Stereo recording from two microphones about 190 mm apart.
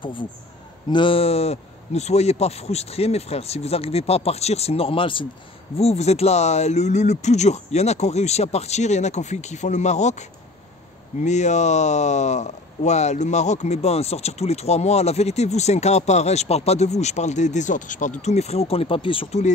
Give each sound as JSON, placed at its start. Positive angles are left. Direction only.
{"t": 0.0, "sound": "speech", "side_deg": 25}